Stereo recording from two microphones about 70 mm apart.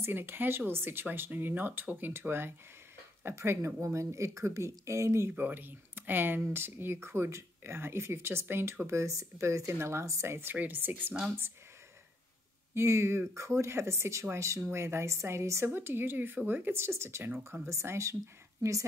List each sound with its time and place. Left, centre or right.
0.0 s speech: right
5.3 s speech: right
12.7 s speech: right
15.7 s speech: right